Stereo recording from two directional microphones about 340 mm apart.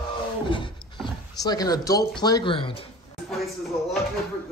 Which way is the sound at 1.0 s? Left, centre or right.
Centre.